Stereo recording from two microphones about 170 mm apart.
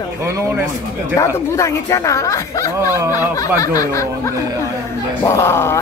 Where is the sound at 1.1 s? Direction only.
15° left (ahead or behind).